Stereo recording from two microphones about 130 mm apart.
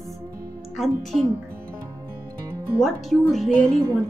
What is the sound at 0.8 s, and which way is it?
Speech, centre (ahead or behind).